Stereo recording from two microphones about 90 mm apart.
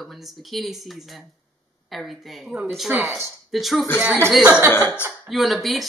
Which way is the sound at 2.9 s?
20° right (ahead or behind).